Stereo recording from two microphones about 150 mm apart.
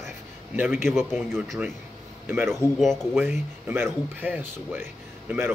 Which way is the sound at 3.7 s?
15° right (ahead or behind).